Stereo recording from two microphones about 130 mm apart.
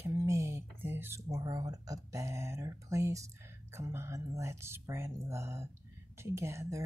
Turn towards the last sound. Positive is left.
turn(degrees=-25)  # may be behind; listen again after turning